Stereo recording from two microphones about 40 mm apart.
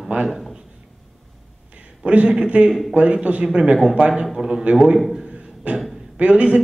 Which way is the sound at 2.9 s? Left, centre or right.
Right.